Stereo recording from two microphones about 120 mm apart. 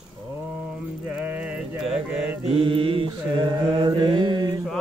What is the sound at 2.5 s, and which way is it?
Mantra, 50° right (ahead or behind).